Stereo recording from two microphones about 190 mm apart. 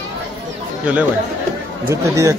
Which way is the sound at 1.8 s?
15° right (ahead or behind).